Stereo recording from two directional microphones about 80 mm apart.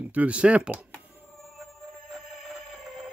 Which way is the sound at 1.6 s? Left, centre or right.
Centre.